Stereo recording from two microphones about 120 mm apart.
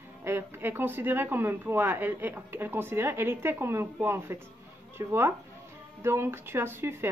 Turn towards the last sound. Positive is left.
turn(degrees=-20)  # may be behind; listen again after turning